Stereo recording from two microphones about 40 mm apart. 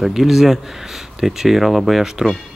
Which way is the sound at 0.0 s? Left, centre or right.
Centre.